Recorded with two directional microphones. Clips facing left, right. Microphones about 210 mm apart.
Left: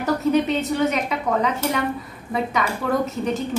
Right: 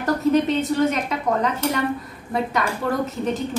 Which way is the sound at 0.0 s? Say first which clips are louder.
Right 1 dB; centre (ahead or behind).